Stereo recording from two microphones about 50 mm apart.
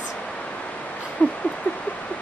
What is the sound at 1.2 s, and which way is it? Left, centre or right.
Rodents, left.